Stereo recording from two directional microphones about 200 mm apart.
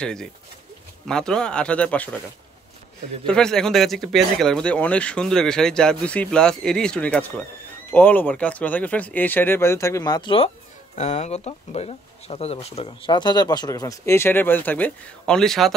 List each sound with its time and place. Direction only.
0.0 s speech: 5° left (ahead or behind)
3.3 s speech: 5° left (ahead or behind)